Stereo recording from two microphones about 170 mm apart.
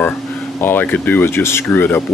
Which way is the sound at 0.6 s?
10° left (ahead or behind).